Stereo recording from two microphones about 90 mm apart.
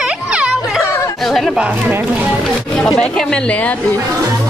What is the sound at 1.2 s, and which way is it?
Chatter, 5° left (ahead or behind).